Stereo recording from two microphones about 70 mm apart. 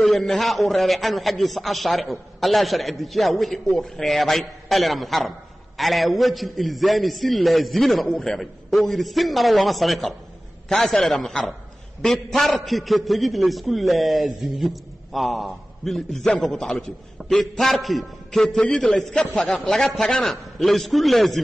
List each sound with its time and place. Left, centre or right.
0.0 s a man's voice: centre